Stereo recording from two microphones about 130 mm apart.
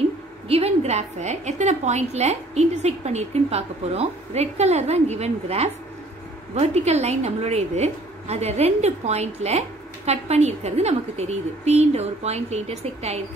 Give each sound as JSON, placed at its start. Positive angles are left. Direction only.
{"t": 0.5, "sound": "a woman's voice", "side_deg": -55}